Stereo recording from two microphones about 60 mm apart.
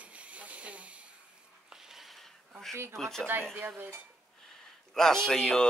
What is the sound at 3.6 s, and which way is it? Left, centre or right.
Dishes, right.